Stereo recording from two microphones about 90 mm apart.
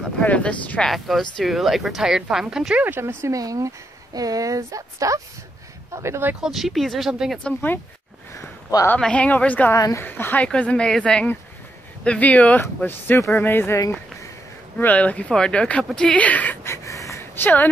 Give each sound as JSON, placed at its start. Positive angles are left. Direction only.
{"t": 0.2, "sound": "speech", "side_deg": 15}
{"t": 0.8, "sound": "speech", "side_deg": 0}
{"t": 2.8, "sound": "speech", "side_deg": -20}
{"t": 3.3, "sound": "speech", "side_deg": -40}
{"t": 6.4, "sound": "speech", "side_deg": 0}
{"t": 7.4, "sound": "speech", "side_deg": 20}
{"t": 8.7, "sound": "speech", "side_deg": 45}
{"t": 9.0, "sound": "speech", "side_deg": 15}
{"t": 14.8, "sound": "speech", "side_deg": 20}
{"t": 16.6, "sound": "a sound", "side_deg": 35}